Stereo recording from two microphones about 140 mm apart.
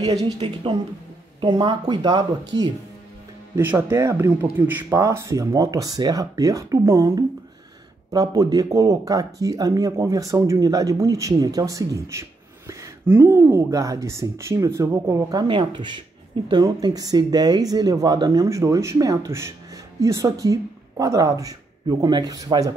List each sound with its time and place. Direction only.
0.0 s speech: 30° right (ahead or behind)
1.4 s speech: 35° right (ahead or behind)
3.5 s speech: 20° right (ahead or behind)
15.4 s speech: 35° right (ahead or behind)